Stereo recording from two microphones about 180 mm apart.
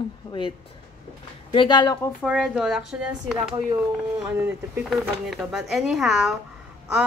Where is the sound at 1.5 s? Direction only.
25° left (ahead or behind).